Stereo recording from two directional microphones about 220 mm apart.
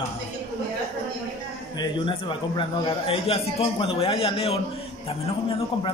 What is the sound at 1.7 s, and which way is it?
A man's voice, 20° left (ahead or behind).